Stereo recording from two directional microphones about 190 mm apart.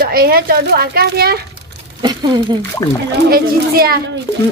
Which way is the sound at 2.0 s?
20° right (ahead or behind).